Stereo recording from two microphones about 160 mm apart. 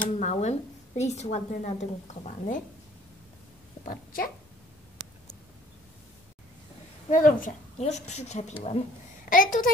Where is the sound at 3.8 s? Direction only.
60° left (ahead or behind).